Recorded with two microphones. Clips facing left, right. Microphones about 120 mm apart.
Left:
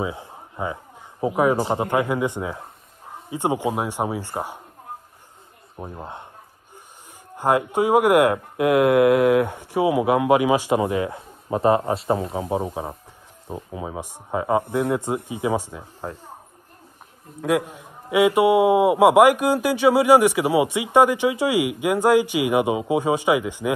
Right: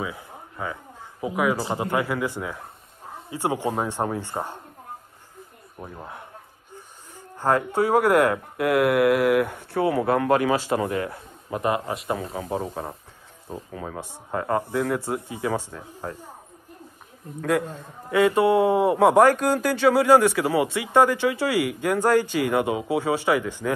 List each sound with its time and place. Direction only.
0.0 s a sound: 25° left (ahead or behind)
1.2 s a man's voice: 30° left (ahead or behind); by 4.6 s 10° left (ahead or behind)
5.8 s speech: 25° left (ahead or behind)
7.3 s speech: 15° left (ahead or behind)
12.6 s a man's voice: 10° left (ahead or behind)
17.4 s a man's voice: 15° left (ahead or behind)